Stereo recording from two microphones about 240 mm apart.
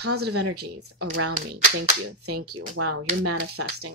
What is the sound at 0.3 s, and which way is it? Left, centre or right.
Speech, right.